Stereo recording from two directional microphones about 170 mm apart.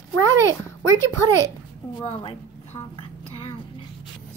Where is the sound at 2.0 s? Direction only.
35° left (ahead or behind).